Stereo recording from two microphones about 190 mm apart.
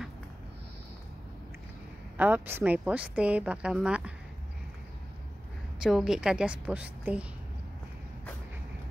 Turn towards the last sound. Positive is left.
turn(degrees=-5)  # may be behind; listen again after turning